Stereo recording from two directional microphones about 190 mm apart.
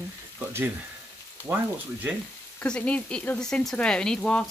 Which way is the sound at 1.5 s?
15° right (ahead or behind).